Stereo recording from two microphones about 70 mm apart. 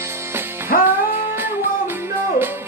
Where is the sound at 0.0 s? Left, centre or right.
Right.